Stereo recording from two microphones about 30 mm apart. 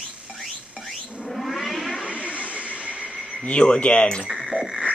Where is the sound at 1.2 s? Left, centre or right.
Centre.